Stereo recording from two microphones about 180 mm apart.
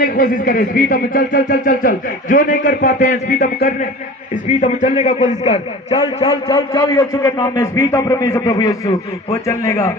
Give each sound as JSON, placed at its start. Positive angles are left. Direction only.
{"t": 0.0, "sound": "speech", "side_deg": 50}
{"t": 3.3, "sound": "a man's voice", "side_deg": 55}
{"t": 4.5, "sound": "speech", "side_deg": 45}
{"t": 6.2, "sound": "a man's voice", "side_deg": 25}